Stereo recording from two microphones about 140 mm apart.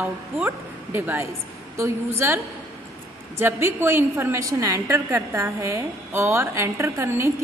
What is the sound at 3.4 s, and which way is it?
A woman's voice, 15° right (ahead or behind).